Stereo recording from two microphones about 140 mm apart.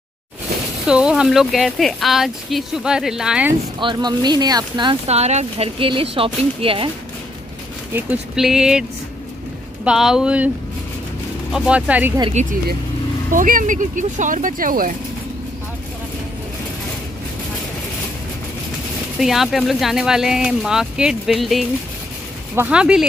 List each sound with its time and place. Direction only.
0.8 s speech: 5° right (ahead or behind)
3.8 s speech: 30° right (ahead or behind)
5.0 s speech: 50° right (ahead or behind)
8.4 s speech: 5° right (ahead or behind)
9.8 s speech: 5° right (ahead or behind)
11.5 s speech: 5° right (ahead or behind)
12.4 s speech: 70° right (ahead or behind); by 14.9 s 85° right
19.1 s speech: centre (ahead or behind)